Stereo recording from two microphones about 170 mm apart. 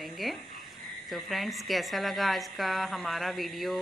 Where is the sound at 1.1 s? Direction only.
Centre (ahead or behind).